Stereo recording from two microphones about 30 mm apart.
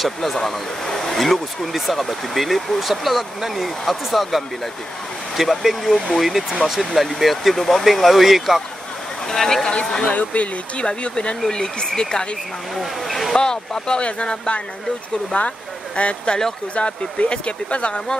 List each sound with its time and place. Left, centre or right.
0.0 s speech: centre
9.3 s speech: centre
10.0 s speech: left
10.8 s speech: left
12.7 s speech: centre
13.3 s speech: left
15.3 s speech: left